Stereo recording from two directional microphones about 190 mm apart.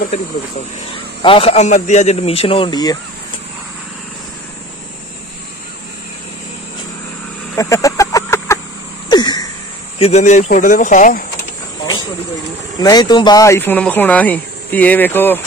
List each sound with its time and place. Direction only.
1.2 s a man's voice: 30° left (ahead or behind)
7.5 s a sound: 15° left (ahead or behind)
9.9 s speech: 35° left (ahead or behind)
12.7 s speech: 20° left (ahead or behind)